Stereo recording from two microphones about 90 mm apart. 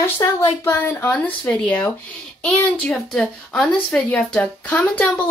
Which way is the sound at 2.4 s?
5° left (ahead or behind).